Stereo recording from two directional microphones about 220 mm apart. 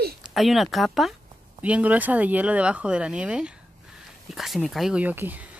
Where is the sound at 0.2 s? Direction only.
Centre (ahead or behind).